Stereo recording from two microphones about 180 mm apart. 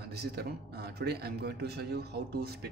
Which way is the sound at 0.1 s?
65° right (ahead or behind).